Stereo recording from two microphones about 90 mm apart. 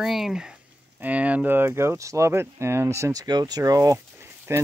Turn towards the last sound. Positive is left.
turn(degrees=-25)  # may be behind; listen again after turning